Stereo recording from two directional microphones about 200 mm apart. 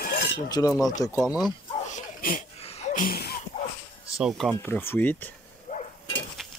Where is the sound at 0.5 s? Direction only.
20° left (ahead or behind).